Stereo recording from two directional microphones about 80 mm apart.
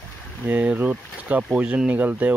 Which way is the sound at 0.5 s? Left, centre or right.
Right.